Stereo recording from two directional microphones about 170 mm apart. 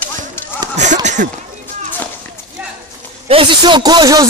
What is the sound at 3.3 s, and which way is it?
Speech, 30° right (ahead or behind).